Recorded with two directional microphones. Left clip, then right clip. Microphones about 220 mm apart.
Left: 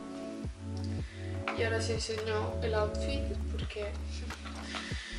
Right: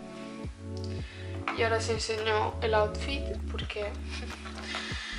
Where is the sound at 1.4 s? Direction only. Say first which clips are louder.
Right 4 dB; 5° left (ahead or behind).